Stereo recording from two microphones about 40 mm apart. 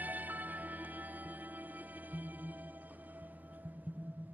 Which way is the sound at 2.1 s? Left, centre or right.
Right.